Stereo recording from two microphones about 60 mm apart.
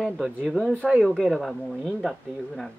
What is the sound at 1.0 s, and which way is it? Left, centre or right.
Speech, centre.